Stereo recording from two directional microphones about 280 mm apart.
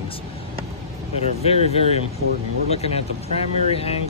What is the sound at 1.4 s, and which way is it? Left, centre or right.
A man's voice, left.